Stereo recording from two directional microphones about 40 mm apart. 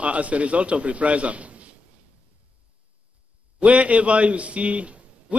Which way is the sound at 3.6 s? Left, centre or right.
Right.